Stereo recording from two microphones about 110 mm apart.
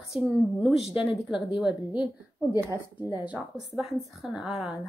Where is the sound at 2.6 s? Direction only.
25° right (ahead or behind).